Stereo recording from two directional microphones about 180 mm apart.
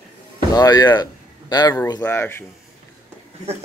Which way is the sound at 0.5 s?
20° left (ahead or behind).